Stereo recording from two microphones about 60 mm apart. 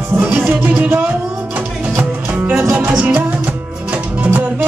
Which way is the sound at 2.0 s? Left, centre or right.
Right.